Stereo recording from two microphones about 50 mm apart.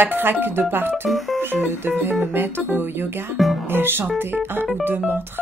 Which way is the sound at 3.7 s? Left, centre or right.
Right.